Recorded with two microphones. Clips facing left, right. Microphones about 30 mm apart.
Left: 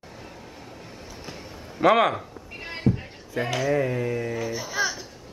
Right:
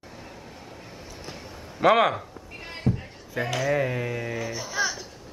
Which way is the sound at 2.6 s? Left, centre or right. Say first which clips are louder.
Left 4 dB; centre.